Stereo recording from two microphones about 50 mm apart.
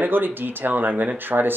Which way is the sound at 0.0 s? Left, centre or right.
Right.